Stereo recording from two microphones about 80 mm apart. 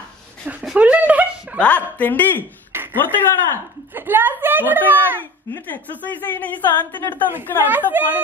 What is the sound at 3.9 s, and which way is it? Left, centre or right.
Speech, right.